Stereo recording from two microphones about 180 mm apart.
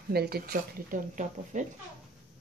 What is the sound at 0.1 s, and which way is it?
Speech, 60° right (ahead or behind).